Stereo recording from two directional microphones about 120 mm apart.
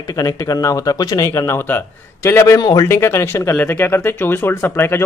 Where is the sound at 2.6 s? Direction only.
35° left (ahead or behind).